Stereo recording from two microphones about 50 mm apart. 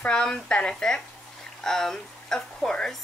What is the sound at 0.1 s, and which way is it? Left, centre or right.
Speech, centre.